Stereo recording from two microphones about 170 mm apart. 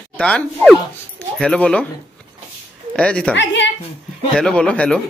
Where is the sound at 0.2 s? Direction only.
5° left (ahead or behind).